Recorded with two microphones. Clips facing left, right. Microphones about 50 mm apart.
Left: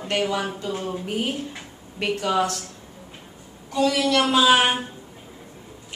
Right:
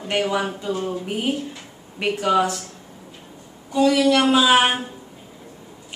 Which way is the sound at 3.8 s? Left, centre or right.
Centre.